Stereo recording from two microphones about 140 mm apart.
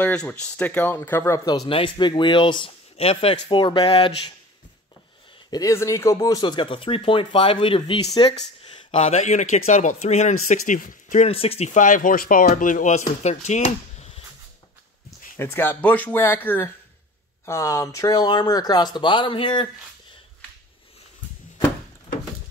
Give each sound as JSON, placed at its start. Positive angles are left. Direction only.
{"t": 0.0, "sound": "speech", "side_deg": 10}
{"t": 1.7, "sound": "speech", "side_deg": 35}
{"t": 5.5, "sound": "speech", "side_deg": 25}
{"t": 12.4, "sound": "speech", "side_deg": 70}
{"t": 15.3, "sound": "speech", "side_deg": 15}